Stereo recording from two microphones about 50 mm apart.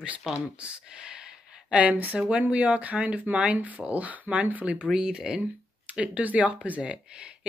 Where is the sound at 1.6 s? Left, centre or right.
Right.